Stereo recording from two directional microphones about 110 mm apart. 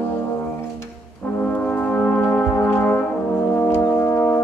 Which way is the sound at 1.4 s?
15° left (ahead or behind).